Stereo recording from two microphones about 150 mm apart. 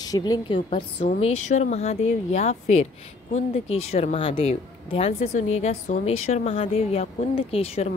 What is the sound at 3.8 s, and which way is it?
A woman's voice, 45° left (ahead or behind).